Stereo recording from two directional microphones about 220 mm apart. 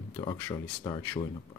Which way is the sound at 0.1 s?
20° left (ahead or behind).